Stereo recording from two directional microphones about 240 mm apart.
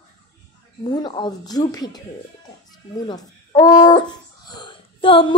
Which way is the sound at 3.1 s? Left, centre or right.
Centre.